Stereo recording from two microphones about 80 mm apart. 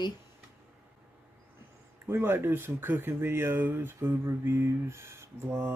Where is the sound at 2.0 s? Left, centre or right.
Right.